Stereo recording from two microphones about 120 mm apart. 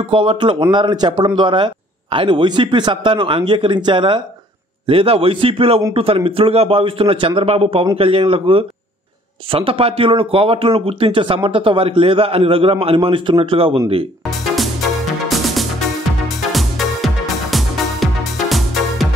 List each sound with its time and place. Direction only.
0.1 s speech: 45° right (ahead or behind)
14.5 s music: centre (ahead or behind)